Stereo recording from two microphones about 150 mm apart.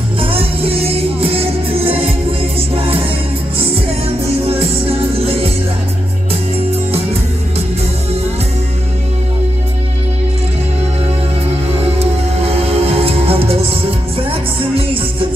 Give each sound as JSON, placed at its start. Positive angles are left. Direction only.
{"t": 0.2, "sound": "music", "side_deg": -40}
{"t": 11.8, "sound": "music", "side_deg": -40}